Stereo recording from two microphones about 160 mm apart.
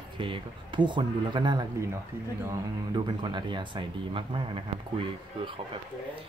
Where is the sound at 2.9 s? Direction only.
30° right (ahead or behind).